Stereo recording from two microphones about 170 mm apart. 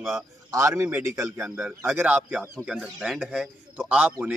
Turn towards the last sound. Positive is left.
turn(degrees=-10)  # may be behind; listen again after turning